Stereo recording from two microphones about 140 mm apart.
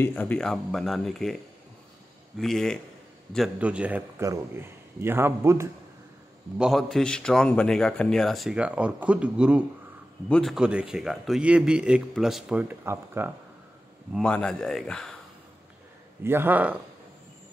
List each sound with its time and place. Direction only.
0.0 s a man's voice: 10° left (ahead or behind); by 4.0 s 10° right (ahead or behind)
4.2 s a man's voice: 25° right (ahead or behind)
6.6 s a man's voice: centre (ahead or behind)
10.2 s a man's voice: 5° left (ahead or behind)
10.5 s a man's voice: 5° right (ahead or behind)
14.1 s a man's voice: 5° left (ahead or behind)
16.2 s a man's voice: 15° right (ahead or behind)